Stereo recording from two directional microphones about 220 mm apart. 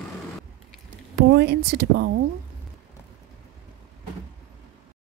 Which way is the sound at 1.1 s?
50° right (ahead or behind).